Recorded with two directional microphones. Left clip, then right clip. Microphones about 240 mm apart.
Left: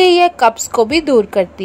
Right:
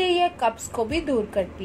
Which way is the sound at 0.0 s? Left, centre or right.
Left.